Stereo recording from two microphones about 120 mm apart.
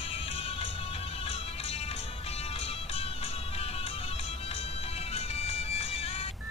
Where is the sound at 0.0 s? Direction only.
50° left (ahead or behind).